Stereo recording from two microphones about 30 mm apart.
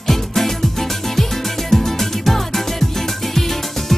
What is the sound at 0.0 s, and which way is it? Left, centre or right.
Music, centre.